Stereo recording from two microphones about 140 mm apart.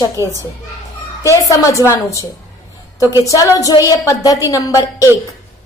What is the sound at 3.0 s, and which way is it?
Speech, 20° right (ahead or behind).